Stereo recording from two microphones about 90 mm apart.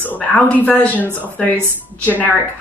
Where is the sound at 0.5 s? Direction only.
20° left (ahead or behind).